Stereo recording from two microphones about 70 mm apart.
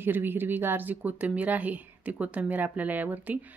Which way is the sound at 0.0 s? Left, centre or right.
Right.